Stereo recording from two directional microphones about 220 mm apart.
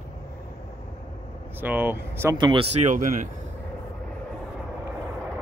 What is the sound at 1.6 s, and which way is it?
Speech, 10° right (ahead or behind).